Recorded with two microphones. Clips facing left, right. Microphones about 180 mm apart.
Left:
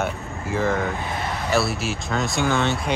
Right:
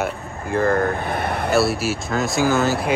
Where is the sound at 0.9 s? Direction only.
55° right (ahead or behind).